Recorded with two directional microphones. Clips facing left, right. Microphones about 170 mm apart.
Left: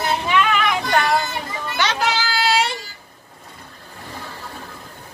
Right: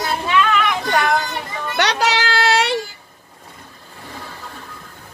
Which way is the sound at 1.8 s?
75° right (ahead or behind).